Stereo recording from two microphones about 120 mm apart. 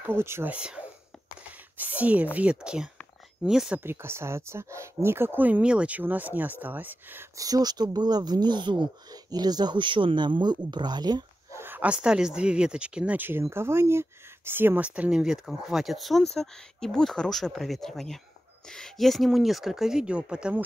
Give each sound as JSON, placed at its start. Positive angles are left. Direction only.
{"t": 0.0, "sound": "speech", "side_deg": -20}
{"t": 3.8, "sound": "speech", "side_deg": -20}
{"t": 7.3, "sound": "speech", "side_deg": -30}
{"t": 11.5, "sound": "speech", "side_deg": -15}